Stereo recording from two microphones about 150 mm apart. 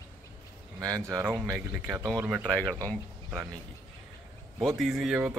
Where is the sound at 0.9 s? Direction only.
20° right (ahead or behind).